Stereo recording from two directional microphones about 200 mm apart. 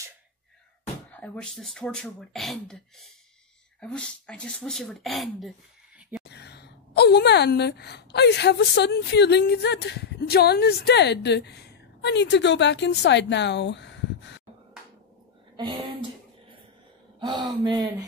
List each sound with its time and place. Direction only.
1.2 s speech: 5° left (ahead or behind)
3.8 s speech: 5° left (ahead or behind)
6.2 s a woman's voice: 55° left (ahead or behind)
15.5 s a sound: 20° right (ahead or behind)
17.2 s speech: 20° right (ahead or behind)